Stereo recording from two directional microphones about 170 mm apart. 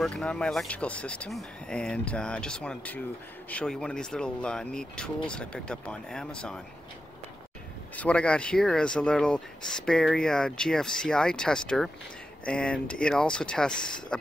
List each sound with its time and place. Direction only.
0.0 s speech: 5° left (ahead or behind)
7.9 s speech: 10° left (ahead or behind)